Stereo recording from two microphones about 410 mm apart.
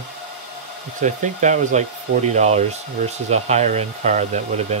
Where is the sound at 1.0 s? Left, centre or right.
Centre.